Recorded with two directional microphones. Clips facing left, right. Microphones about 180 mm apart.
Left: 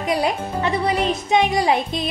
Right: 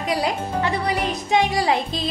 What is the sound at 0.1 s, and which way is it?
Music, 20° left (ahead or behind).